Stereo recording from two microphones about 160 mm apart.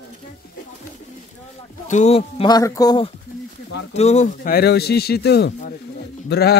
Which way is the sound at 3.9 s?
45° left (ahead or behind).